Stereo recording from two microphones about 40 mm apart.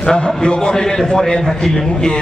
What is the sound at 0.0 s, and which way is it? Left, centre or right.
A man's voice, left.